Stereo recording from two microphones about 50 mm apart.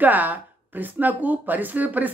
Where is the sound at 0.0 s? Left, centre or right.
Right.